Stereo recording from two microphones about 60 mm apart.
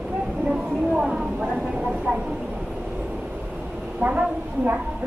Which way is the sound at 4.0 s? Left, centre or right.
Right.